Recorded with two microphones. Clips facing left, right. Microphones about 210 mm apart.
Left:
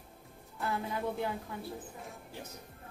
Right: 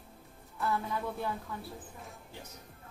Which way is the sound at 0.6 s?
15° left (ahead or behind).